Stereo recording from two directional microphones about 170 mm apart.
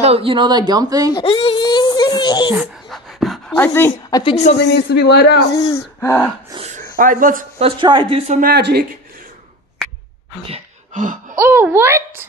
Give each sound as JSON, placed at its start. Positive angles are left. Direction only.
{"t": 0.0, "sound": "speech", "side_deg": -35}
{"t": 1.2, "sound": "a sound", "side_deg": 30}
{"t": 2.9, "sound": "pant", "side_deg": 0}
{"t": 3.5, "sound": "speech", "side_deg": 10}
{"t": 4.2, "sound": "speech", "side_deg": 35}
{"t": 4.6, "sound": "speech", "side_deg": 90}
{"t": 5.9, "sound": "gasp", "side_deg": 10}
{"t": 6.7, "sound": "a sound", "side_deg": -50}
{"t": 7.5, "sound": "speech", "side_deg": -35}
{"t": 8.4, "sound": "speech", "side_deg": -70}
{"t": 10.5, "sound": "a sound", "side_deg": -45}
{"t": 11.3, "sound": "a child's voice", "side_deg": -15}